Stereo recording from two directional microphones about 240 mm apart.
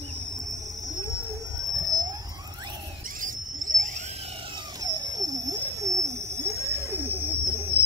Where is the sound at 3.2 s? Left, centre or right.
Right.